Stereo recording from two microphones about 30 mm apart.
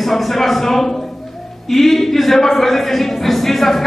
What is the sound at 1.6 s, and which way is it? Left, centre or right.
Speech, centre.